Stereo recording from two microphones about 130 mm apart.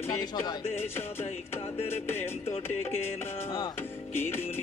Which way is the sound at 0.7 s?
15° left (ahead or behind).